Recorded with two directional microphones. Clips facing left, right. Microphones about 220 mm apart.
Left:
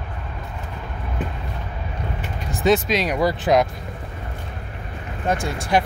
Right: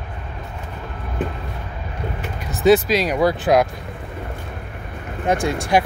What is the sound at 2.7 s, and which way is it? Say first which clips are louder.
Speech: right 4 dB; centre (ahead or behind).